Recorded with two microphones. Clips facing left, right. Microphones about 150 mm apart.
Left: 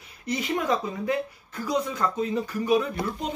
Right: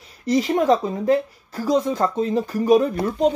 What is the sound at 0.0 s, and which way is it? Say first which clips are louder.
Speech: right 10 dB; 40° right (ahead or behind).